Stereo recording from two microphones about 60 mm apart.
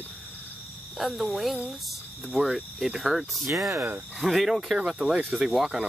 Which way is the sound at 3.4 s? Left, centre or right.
Right.